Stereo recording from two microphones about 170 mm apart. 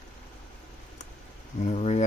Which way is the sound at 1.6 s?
40° left (ahead or behind).